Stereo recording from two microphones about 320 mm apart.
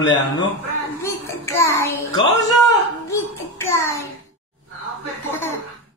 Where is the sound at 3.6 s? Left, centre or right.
Centre.